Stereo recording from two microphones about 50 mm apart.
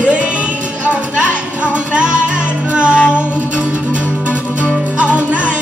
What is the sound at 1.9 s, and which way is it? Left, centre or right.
Music, right.